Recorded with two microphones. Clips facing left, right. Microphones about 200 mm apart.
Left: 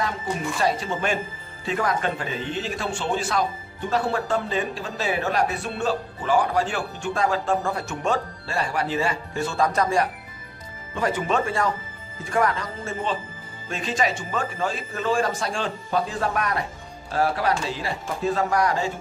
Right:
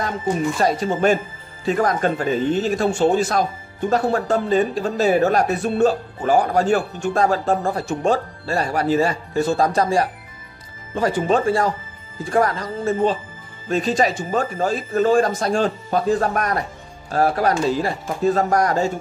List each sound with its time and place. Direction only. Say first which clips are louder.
0.6 s speech: right 5 dB; 40° right (ahead or behind)